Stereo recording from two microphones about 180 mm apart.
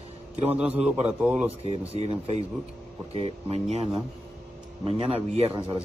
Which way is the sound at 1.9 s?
35° right (ahead or behind).